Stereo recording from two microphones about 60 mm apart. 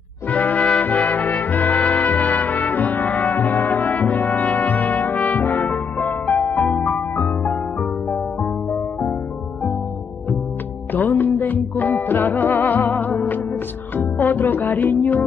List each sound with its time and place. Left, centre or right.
0.3 s brass instrument: left
6.7 s music: left
10.9 s music: left